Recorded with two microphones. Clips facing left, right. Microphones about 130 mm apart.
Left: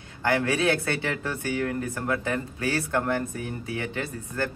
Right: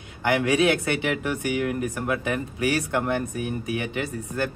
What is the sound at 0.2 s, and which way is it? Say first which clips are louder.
Speech: right 3 dB; 20° right (ahead or behind).